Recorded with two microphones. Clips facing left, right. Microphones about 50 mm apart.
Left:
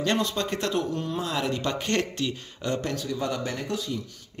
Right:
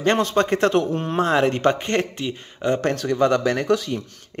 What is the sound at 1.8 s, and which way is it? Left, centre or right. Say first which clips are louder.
A man's voice: right 3 dB; right.